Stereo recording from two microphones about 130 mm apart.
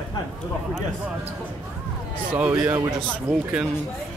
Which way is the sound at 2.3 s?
15° right (ahead or behind).